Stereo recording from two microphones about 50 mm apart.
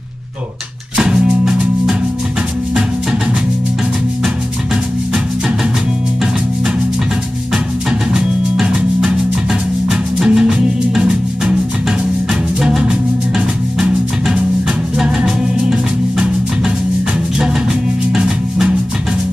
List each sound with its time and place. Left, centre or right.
0.9 s music: centre
8.1 s music: centre
12.6 s music: centre
18.1 s music: centre